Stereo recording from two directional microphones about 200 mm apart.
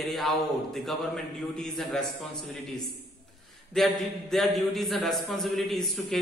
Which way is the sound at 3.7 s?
Centre (ahead or behind).